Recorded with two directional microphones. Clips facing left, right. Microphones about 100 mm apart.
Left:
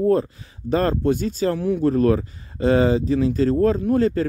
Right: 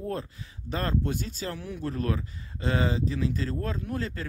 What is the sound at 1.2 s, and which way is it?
Speech, 90° left.